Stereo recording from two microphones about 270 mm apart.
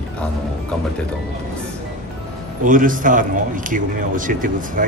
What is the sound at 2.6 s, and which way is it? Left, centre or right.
A man's voice, right.